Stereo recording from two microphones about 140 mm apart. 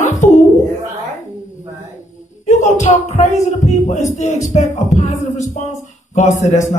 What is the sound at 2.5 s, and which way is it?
Speech, 60° left (ahead or behind).